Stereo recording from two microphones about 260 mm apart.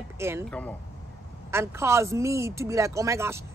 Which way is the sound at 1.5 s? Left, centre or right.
Centre.